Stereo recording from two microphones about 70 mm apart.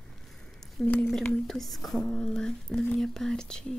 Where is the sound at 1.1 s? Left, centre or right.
Centre.